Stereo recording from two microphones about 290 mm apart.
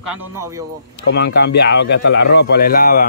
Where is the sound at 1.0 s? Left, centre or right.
Left.